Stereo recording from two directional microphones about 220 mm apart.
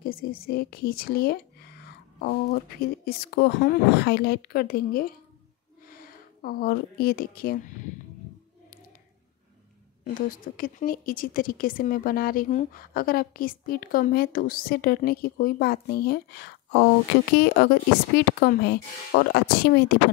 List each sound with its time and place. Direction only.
0.0 s speech: 40° left (ahead or behind)
10.0 s speech: 40° left (ahead or behind)